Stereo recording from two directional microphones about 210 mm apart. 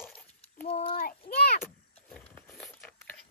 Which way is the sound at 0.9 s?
45° left (ahead or behind).